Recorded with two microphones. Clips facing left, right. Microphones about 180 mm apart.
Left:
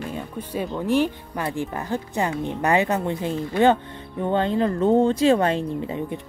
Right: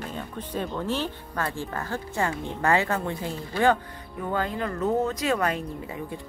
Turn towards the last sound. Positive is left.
turn(degrees=25)  # may be behind; listen again after turning